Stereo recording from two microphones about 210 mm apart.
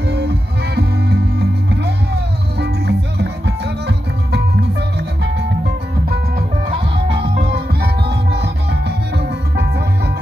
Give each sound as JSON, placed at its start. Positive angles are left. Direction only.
{"t": 0.7, "sound": "music", "side_deg": -50}
{"t": 2.6, "sound": "music", "side_deg": -50}
{"t": 6.7, "sound": "music", "side_deg": -25}
{"t": 7.5, "sound": "music", "side_deg": -50}